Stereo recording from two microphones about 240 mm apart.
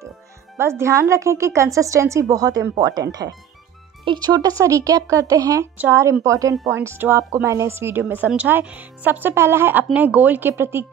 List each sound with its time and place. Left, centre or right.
0.6 s a woman's voice: centre